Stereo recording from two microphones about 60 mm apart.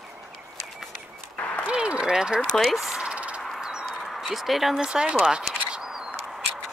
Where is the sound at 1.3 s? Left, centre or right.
Left.